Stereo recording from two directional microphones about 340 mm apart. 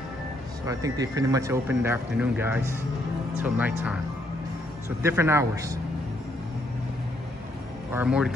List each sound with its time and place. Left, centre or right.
0.7 s speech: centre
7.9 s speech: centre